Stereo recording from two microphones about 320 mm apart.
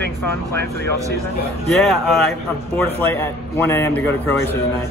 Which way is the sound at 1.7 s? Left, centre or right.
Centre.